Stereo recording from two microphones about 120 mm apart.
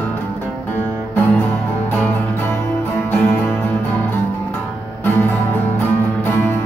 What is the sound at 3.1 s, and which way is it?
Music, 15° left (ahead or behind).